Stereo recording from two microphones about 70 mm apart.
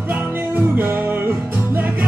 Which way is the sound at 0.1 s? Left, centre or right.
Right.